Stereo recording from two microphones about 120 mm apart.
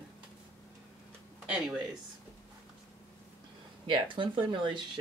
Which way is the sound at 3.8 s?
45° right (ahead or behind).